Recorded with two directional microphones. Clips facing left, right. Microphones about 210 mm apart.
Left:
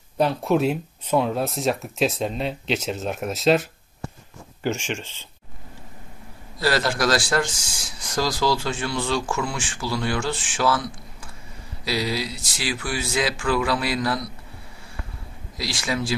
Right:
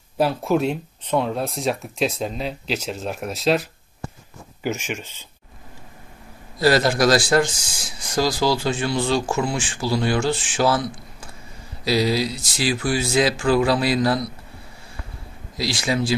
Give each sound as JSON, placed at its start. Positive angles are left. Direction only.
{"t": 0.2, "sound": "speech", "side_deg": 0}
{"t": 4.6, "sound": "speech", "side_deg": -10}
{"t": 6.6, "sound": "speech", "side_deg": -15}
{"t": 8.2, "sound": "speech", "side_deg": -30}
{"t": 11.8, "sound": "speech", "side_deg": -40}
{"t": 15.5, "sound": "speech", "side_deg": -30}